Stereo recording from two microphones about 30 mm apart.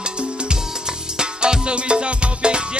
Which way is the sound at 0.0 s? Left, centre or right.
Right.